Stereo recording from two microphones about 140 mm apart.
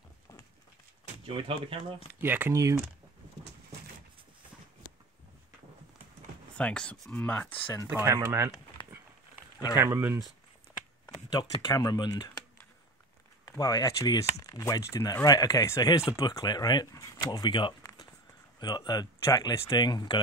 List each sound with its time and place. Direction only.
1.2 s speech: 40° right (ahead or behind)
2.2 s speech: 15° right (ahead or behind)
6.5 s speech: 5° left (ahead or behind)
7.9 s speech: 20° right (ahead or behind)
9.8 s speech: 20° right (ahead or behind)
11.2 s speech: 30° left (ahead or behind)
13.5 s speech: 25° left (ahead or behind)